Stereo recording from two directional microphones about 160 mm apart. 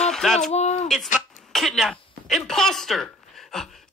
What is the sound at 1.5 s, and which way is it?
Speech, centre (ahead or behind).